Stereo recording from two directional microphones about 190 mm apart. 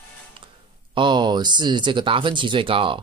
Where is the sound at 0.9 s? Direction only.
25° right (ahead or behind).